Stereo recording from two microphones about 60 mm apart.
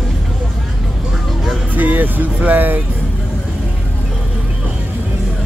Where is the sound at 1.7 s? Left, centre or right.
Right.